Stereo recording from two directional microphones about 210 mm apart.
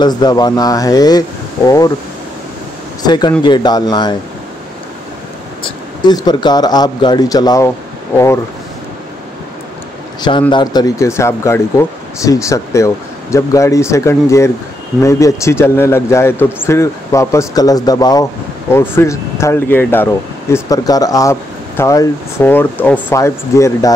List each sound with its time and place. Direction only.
0.0 s speech: 20° left (ahead or behind)
3.0 s speech: 20° left (ahead or behind)
5.6 s speech: 20° left (ahead or behind)
10.5 s speech: 20° left (ahead or behind)